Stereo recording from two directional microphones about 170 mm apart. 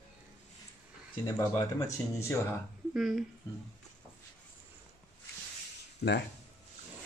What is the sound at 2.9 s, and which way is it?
Speech, centre (ahead or behind).